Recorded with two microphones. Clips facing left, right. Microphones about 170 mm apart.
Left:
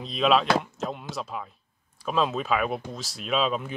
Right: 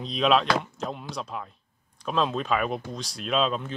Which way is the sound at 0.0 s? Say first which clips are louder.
Even; centre (ahead or behind).